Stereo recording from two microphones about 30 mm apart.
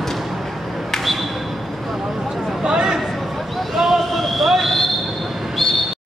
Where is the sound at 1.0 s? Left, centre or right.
Centre.